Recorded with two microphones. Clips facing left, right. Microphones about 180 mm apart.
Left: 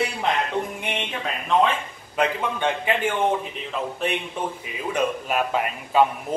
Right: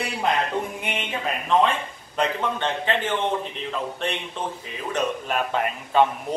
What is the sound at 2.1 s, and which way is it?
A man's voice, 10° left (ahead or behind).